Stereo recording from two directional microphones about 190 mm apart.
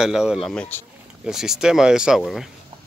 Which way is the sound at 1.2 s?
5° right (ahead or behind).